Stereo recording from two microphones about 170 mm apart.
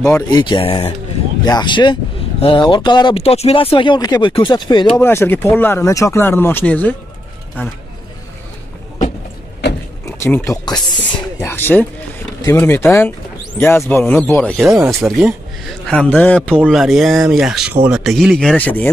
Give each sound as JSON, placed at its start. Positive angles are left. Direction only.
{"t": 0.0, "sound": "speech", "side_deg": 20}
{"t": 5.0, "sound": "speech", "side_deg": 15}
{"t": 10.0, "sound": "speech", "side_deg": 15}
{"t": 16.5, "sound": "speech", "side_deg": -5}